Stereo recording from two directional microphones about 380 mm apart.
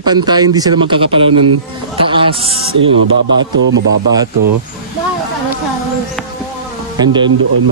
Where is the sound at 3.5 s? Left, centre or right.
Right.